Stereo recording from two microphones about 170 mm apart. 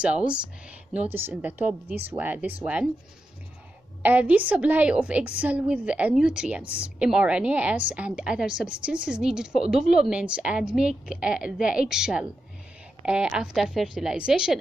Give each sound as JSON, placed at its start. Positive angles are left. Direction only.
{"t": 0.0, "sound": "a woman's voice", "side_deg": -5}
{"t": 4.0, "sound": "a woman's voice", "side_deg": -10}